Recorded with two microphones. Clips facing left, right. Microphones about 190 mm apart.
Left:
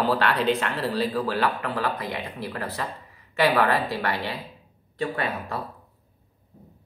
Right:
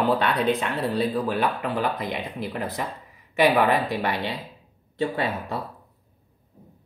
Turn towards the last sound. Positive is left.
turn(degrees=-20)  # may be behind; listen again after turning